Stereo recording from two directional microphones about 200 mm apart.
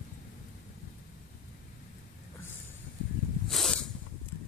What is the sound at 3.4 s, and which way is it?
Snake, centre (ahead or behind).